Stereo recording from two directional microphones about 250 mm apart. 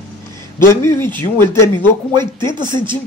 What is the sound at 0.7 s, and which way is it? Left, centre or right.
Speech, centre.